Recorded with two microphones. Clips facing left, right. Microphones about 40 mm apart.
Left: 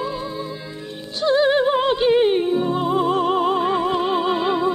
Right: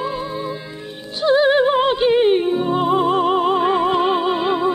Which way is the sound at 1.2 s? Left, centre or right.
Centre.